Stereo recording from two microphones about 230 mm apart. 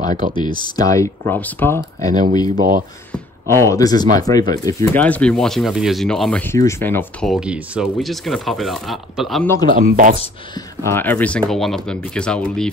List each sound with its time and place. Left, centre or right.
0.0 s speech: right
0.4 s speech: centre
9.7 s speech: right
10.8 s speech: centre